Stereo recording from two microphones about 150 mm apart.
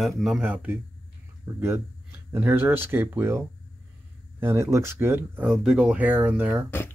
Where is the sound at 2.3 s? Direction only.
15° right (ahead or behind).